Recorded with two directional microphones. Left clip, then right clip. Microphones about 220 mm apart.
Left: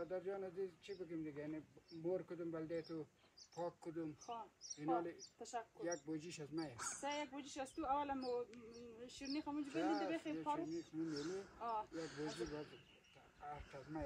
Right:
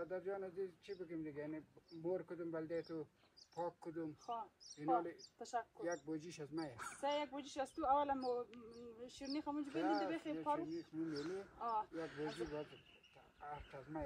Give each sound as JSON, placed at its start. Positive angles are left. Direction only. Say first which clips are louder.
{"t": 0.0, "sound": "speech", "louder": "right 1 dB", "side_deg": -10}
{"t": 7.0, "sound": "speech", "louder": "right 6 dB", "side_deg": -15}
{"t": 11.6, "sound": "speech", "louder": "right 3 dB", "side_deg": -15}
{"t": 11.9, "sound": "speech", "louder": "right 2 dB", "side_deg": 5}